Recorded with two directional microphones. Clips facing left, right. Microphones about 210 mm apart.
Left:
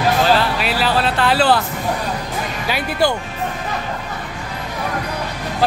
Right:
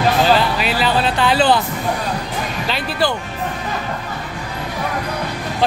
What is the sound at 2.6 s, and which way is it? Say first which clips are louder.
Speech: left 2 dB; 10° left (ahead or behind).